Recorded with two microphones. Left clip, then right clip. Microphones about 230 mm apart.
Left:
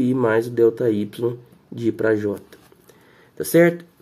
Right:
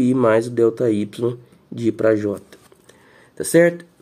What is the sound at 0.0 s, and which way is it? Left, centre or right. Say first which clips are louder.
Speech: right 3 dB; centre.